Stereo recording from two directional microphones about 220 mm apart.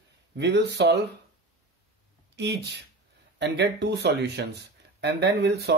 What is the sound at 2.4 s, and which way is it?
Speech, 50° right (ahead or behind).